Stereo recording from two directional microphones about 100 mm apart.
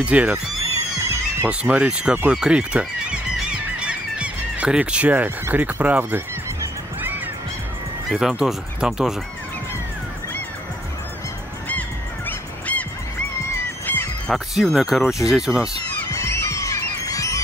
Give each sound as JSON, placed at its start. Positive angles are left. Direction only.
{"t": 0.0, "sound": "speech", "side_deg": -15}
{"t": 0.7, "sound": "music", "side_deg": -25}
{"t": 1.5, "sound": "speech", "side_deg": -10}
{"t": 2.2, "sound": "honk", "side_deg": -10}
{"t": 8.1, "sound": "speech", "side_deg": -5}
{"t": 12.3, "sound": "honk", "side_deg": 15}
{"t": 13.8, "sound": "honk", "side_deg": 20}
{"t": 14.3, "sound": "speech", "side_deg": 0}
{"t": 16.1, "sound": "music", "side_deg": 30}